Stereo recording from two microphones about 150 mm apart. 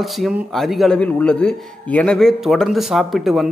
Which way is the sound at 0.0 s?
Centre (ahead or behind).